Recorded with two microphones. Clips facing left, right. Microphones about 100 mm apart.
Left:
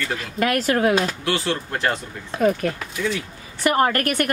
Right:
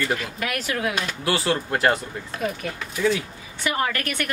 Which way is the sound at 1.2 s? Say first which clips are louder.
Right 1 dB; 10° right (ahead or behind).